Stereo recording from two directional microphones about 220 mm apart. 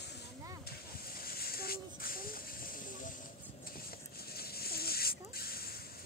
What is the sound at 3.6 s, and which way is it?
Rodents, 40° left (ahead or behind).